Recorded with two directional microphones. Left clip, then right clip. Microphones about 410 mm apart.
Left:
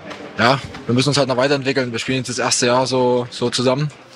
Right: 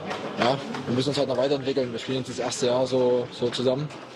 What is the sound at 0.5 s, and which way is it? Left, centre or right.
A man's voice, left.